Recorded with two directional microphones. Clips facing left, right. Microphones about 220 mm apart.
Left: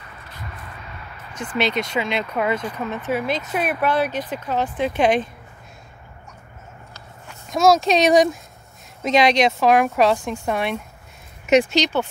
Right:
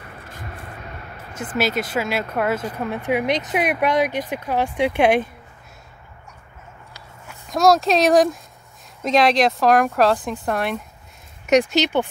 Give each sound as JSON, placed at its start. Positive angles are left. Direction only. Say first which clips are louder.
{"t": 0.0, "sound": "vehicle", "louder": "right 2 dB", "side_deg": -50}
{"t": 1.3, "sound": "speech", "louder": "even", "side_deg": -5}
{"t": 7.5, "sound": "speech", "louder": "even", "side_deg": 0}